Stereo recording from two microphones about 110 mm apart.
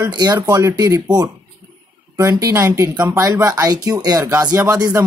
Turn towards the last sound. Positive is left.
turn(degrees=-25)  # may be behind; listen again after turning